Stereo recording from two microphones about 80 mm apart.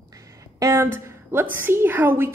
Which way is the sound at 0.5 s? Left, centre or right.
Right.